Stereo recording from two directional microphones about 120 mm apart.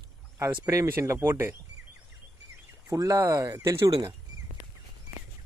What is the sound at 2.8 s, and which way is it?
Speech, 30° right (ahead or behind).